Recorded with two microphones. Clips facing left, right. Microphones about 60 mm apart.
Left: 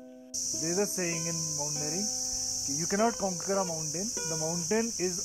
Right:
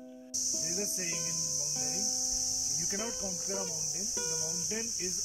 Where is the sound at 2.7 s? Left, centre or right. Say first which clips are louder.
Left 12 dB; left.